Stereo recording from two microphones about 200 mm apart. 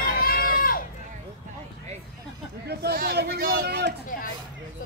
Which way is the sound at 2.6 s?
55° right (ahead or behind).